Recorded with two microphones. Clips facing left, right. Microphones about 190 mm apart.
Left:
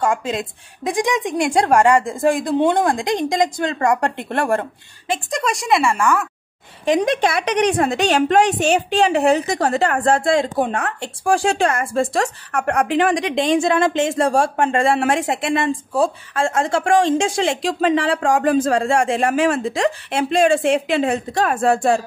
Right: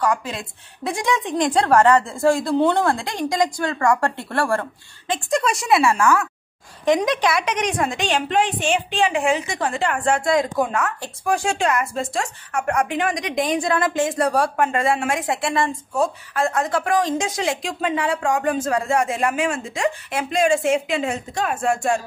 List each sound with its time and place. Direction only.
0.0 s a woman's voice: 25° left (ahead or behind)
5.0 s a woman's voice: 5° left (ahead or behind)
7.1 s a woman's voice: 55° left (ahead or behind)
7.4 s a woman's voice: 35° left (ahead or behind)
12.0 s speech: 60° left (ahead or behind)
13.2 s a woman's voice: 25° left (ahead or behind)
14.9 s speech: 60° left (ahead or behind)
15.1 s a woman's voice: 25° left (ahead or behind)
20.8 s speech: 60° left (ahead or behind)